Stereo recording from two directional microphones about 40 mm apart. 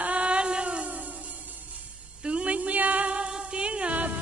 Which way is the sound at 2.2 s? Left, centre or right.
Right.